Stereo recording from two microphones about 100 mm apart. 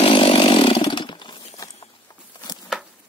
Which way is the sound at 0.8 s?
50° left (ahead or behind).